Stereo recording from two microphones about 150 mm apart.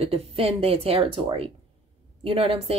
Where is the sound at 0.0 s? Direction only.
40° right (ahead or behind).